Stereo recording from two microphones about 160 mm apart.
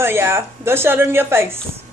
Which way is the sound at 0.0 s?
15° right (ahead or behind).